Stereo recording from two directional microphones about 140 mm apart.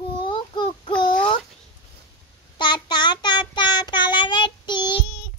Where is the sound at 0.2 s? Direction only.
35° left (ahead or behind).